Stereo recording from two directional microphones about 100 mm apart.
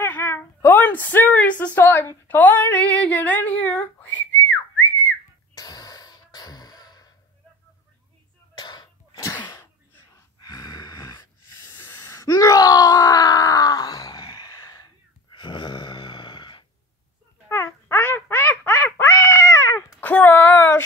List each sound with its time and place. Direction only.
0.0 s a sound: 20° left (ahead or behind)
0.6 s a woman's voice: 20° left (ahead or behind)
5.6 s throat clearing: 40° left (ahead or behind)
8.5 s throat clearing: 45° left (ahead or behind)
10.4 s gasp: 40° left (ahead or behind)
11.8 s groan: 30° left (ahead or behind)
15.3 s a sound: 50° left (ahead or behind)
17.9 s quack: 20° left (ahead or behind)
20.0 s a sound: 20° left (ahead or behind)